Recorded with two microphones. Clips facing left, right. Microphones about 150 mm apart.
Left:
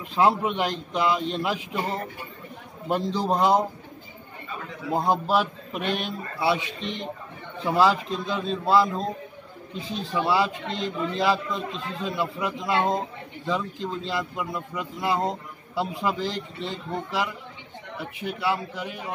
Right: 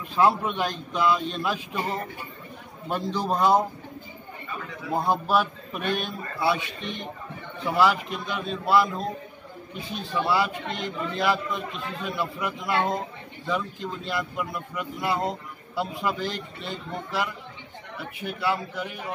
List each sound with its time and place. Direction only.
0.1 s a man's voice: 20° left (ahead or behind)
3.1 s a man's voice: 25° left (ahead or behind)
4.9 s a man's voice: 20° left (ahead or behind)